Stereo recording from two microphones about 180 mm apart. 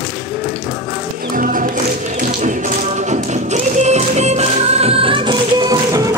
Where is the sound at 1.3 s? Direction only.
50° right (ahead or behind); by 6.2 s 20° right (ahead or behind).